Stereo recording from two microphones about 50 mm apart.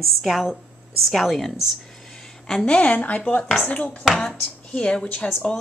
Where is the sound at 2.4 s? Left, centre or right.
Centre.